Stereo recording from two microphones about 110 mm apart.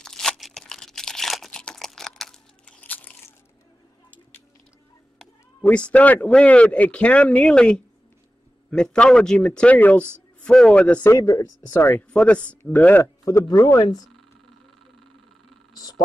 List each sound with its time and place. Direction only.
0.0 s crumpling: 5° left (ahead or behind)
5.6 s a man's voice: 10° left (ahead or behind)
11.1 s speech: 30° left (ahead or behind)
12.1 s a man's voice: 10° left (ahead or behind)
13.0 s speech: 25° left (ahead or behind)